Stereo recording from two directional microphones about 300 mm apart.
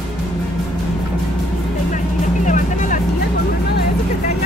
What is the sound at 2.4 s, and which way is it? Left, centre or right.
Music, left.